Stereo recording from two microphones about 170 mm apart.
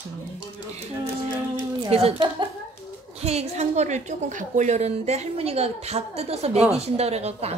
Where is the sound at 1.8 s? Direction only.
35° right (ahead or behind).